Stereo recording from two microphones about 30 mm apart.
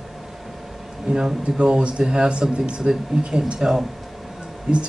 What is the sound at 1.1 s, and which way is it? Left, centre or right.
Speech, right.